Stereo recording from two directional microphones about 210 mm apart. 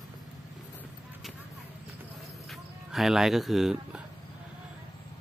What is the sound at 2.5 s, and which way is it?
Speech, centre (ahead or behind).